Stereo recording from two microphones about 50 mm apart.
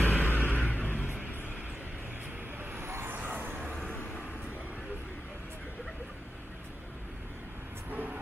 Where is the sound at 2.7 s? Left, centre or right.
Right.